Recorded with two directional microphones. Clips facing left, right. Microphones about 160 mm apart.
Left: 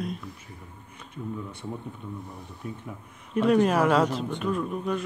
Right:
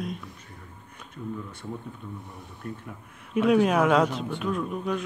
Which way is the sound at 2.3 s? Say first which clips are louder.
Even; centre (ahead or behind).